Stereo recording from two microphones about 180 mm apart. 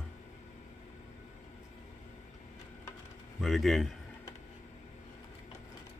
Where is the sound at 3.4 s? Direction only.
Centre (ahead or behind).